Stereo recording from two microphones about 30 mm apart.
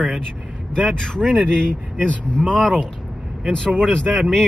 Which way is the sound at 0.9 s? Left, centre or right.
Left.